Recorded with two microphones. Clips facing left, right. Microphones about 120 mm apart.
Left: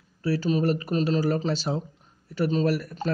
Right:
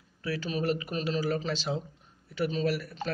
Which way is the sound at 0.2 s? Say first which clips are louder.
Left 7 dB; 35° left (ahead or behind).